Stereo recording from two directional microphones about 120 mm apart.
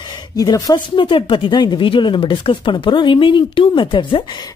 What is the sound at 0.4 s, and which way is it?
Speech, 30° left (ahead or behind).